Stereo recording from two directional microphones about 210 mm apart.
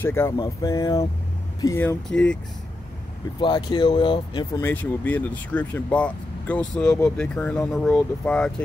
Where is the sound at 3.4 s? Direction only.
20° left (ahead or behind).